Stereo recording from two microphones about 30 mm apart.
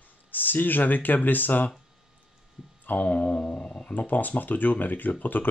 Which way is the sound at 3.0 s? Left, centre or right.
Left.